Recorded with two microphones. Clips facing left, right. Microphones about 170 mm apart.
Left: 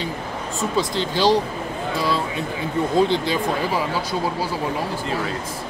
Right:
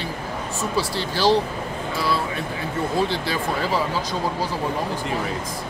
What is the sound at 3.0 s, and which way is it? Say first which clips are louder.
Speech: left 4 dB; 20° left (ahead or behind).